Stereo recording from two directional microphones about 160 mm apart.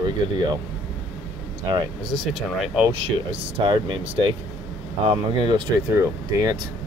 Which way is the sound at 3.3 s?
35° right (ahead or behind).